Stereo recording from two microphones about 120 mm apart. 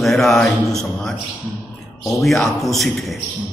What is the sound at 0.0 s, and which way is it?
Speech, centre (ahead or behind).